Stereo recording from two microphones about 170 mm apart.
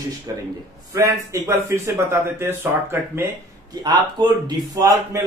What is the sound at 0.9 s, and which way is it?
A man's voice, 20° right (ahead or behind).